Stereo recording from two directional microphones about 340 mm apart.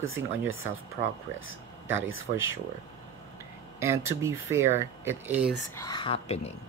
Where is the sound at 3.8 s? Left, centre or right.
Centre.